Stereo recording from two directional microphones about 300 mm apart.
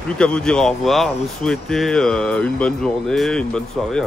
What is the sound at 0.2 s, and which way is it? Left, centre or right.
Speech, centre.